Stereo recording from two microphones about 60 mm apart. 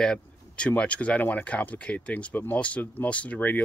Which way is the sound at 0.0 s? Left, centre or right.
Centre.